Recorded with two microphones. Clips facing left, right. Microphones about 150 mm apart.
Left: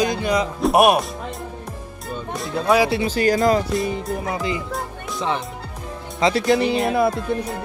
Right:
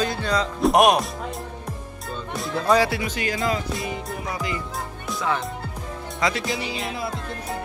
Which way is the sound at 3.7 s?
Centre (ahead or behind).